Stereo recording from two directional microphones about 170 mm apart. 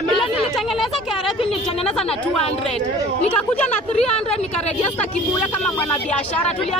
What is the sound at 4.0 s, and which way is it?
Speech, 35° left (ahead or behind).